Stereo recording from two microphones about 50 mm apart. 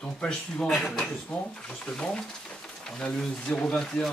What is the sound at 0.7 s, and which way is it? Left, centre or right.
Speech, centre.